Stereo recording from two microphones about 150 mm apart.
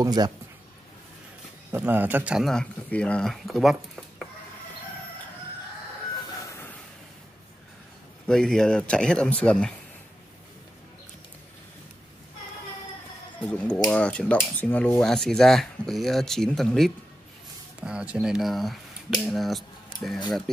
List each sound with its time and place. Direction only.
0.0 s speech: 25° right (ahead or behind)
1.7 s speech: 15° right (ahead or behind)
6.2 s a sound: 20° left (ahead or behind)
8.3 s speech: 5° left (ahead or behind)
13.5 s speech: 5° left (ahead or behind)